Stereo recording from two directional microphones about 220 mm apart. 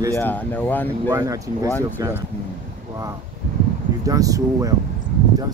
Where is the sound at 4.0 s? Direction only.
15° right (ahead or behind).